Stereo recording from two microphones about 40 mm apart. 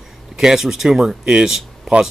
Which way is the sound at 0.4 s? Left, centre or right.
Centre.